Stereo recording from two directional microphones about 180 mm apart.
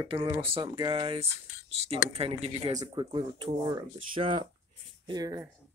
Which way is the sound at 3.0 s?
25° right (ahead or behind).